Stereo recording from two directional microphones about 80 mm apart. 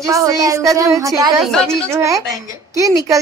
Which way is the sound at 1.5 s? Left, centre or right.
Centre.